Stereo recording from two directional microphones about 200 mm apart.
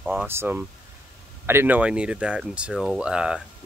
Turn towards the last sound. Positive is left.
turn(degrees=-5)  # may be behind; listen again after turning